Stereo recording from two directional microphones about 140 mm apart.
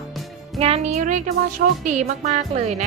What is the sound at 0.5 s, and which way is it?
Speech, 50° right (ahead or behind).